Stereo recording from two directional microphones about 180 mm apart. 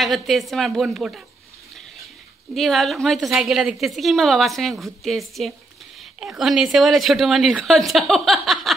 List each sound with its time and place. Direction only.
0.0 s a woman's voice: centre (ahead or behind)
2.5 s a woman's voice: centre (ahead or behind)